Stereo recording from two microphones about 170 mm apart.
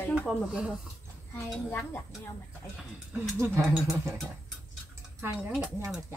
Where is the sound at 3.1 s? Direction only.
15° right (ahead or behind).